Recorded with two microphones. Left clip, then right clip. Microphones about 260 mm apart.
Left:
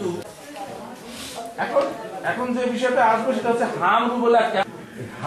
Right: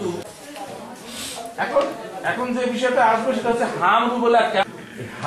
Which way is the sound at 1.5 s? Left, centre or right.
Centre.